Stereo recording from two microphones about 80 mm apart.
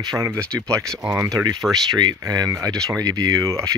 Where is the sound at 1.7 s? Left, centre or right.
Right.